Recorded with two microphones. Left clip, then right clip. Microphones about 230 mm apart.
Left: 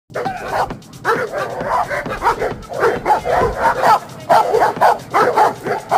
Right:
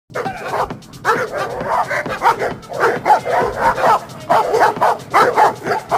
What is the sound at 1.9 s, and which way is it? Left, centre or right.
Dog, right.